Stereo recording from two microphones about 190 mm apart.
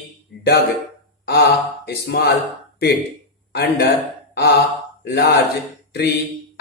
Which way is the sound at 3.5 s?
60° left (ahead or behind).